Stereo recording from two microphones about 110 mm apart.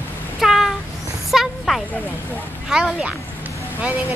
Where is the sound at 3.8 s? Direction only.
15° right (ahead or behind).